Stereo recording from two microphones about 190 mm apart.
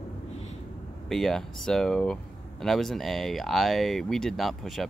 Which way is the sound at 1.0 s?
Centre (ahead or behind).